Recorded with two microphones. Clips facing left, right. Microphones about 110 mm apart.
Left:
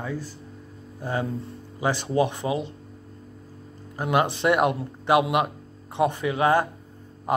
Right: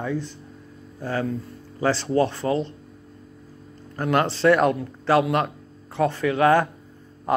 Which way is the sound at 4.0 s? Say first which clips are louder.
Right 2 dB; 15° left (ahead or behind).